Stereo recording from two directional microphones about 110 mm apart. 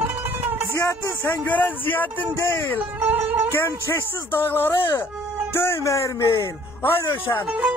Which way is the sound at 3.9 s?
20° left (ahead or behind).